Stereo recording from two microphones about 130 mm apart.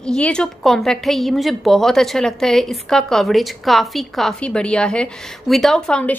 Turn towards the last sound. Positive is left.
turn(degrees=5)  # may be behind; listen again after turning